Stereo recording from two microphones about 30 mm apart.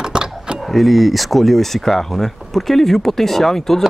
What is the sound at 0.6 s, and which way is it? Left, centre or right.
Speech, centre.